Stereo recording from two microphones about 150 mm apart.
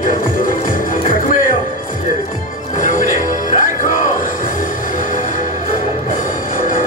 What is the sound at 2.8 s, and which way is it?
Music, 60° left (ahead or behind).